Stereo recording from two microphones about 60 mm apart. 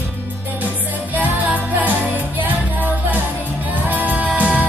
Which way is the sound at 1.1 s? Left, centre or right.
Right.